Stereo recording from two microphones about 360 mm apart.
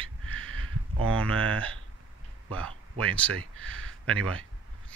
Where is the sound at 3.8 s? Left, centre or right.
Right.